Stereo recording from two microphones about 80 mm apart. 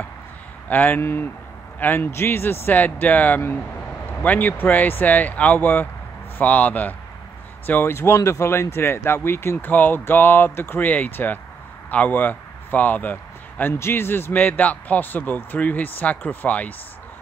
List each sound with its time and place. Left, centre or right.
0.7 s a man's voice: left